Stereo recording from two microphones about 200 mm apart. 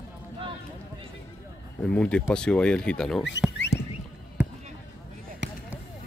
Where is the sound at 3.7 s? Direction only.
35° left (ahead or behind).